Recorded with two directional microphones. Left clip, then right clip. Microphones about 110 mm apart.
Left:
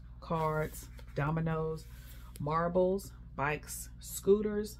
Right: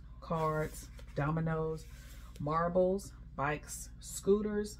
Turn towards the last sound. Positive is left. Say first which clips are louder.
# left 2 dB
turn(degrees=15)  # may be behind; listen again after turning